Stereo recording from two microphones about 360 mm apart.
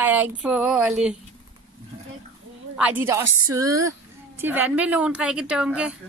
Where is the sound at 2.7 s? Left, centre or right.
Centre.